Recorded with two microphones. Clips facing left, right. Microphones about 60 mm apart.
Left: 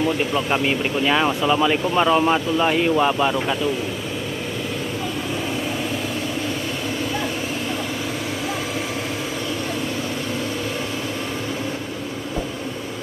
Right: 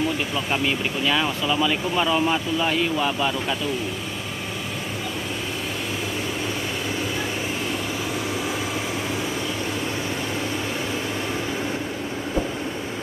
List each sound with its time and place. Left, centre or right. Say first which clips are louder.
0.3 s speech: left 3 dB; centre